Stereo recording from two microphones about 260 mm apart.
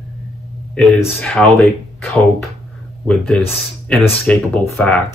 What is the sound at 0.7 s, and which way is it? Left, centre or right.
Speech, centre.